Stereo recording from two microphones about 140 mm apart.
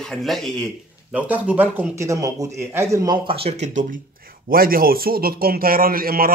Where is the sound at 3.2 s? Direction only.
45° right (ahead or behind).